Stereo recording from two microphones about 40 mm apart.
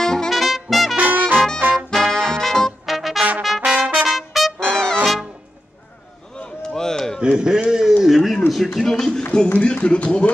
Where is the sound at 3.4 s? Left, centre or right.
Centre.